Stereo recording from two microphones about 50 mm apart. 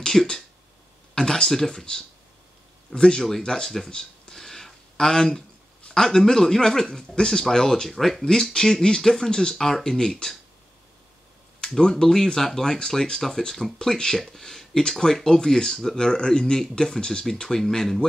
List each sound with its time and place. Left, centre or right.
0.0 s speech: centre
11.7 s speech: centre